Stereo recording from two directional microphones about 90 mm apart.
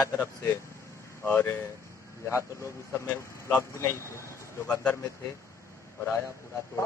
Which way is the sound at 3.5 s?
30° left (ahead or behind).